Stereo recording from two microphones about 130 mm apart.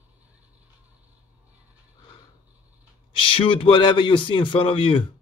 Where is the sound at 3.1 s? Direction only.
45° left (ahead or behind).